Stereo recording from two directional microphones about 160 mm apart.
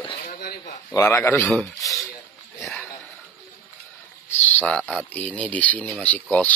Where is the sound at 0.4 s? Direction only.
70° left (ahead or behind).